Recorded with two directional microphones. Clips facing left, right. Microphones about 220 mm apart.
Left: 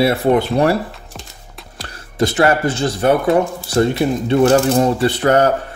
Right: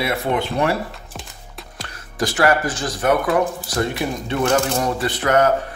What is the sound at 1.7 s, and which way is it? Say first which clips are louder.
Speech: left 6 dB; 30° left (ahead or behind).